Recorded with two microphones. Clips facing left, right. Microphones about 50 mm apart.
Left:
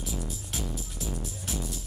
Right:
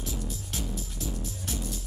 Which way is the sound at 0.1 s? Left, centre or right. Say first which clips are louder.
Even; centre.